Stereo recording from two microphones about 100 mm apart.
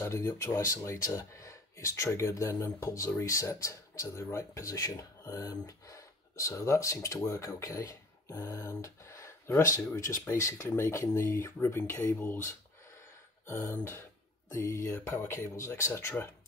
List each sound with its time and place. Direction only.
0.0 s speech: 30° left (ahead or behind)